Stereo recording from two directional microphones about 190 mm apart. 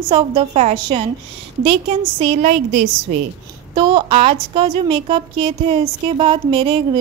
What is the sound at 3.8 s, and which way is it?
A woman's voice, 25° right (ahead or behind).